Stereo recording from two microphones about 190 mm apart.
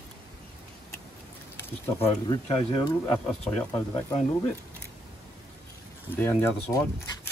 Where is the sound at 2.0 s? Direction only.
30° left (ahead or behind).